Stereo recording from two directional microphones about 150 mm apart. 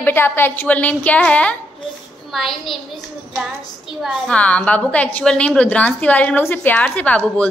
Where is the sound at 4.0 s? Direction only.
5° left (ahead or behind).